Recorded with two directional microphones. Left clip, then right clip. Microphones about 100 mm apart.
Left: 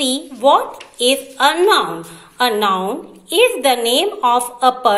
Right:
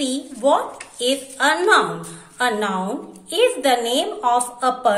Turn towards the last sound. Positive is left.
turn(degrees=20)  # may be behind; listen again after turning